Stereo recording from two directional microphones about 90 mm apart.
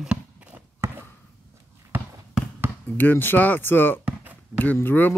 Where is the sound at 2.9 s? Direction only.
20° left (ahead or behind).